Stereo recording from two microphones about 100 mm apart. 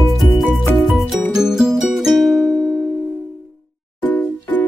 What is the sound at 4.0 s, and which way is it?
Music, 15° left (ahead or behind).